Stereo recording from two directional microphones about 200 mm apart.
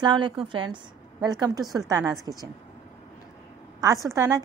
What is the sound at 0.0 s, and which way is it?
A woman's voice, 25° right (ahead or behind).